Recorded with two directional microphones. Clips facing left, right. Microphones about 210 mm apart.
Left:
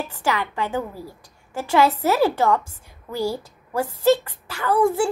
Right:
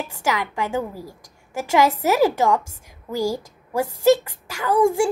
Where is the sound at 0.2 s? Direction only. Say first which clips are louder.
Even; 10° right (ahead or behind).